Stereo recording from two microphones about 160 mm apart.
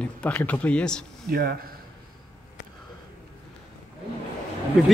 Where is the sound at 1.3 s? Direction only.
75° right (ahead or behind).